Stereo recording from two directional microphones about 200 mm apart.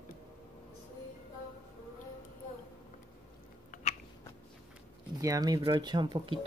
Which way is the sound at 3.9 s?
30° left (ahead or behind).